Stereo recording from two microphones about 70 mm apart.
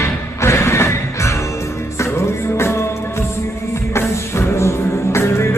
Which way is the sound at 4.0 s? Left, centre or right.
Left.